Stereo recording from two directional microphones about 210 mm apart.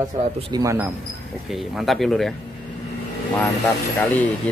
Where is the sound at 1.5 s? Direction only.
Centre (ahead or behind).